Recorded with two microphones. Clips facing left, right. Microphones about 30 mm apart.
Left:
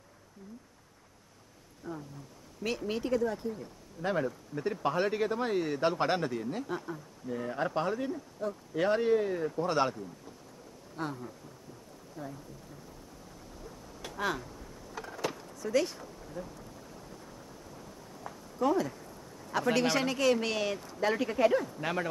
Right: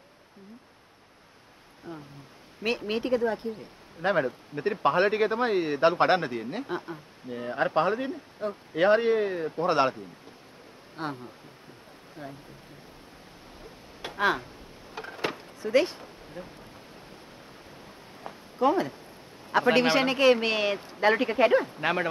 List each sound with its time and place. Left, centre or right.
1.9 s speech: right
13.6 s a sound: right
17.6 s speech: right